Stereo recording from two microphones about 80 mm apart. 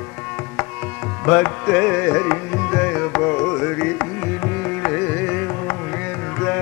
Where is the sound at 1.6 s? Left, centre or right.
Left.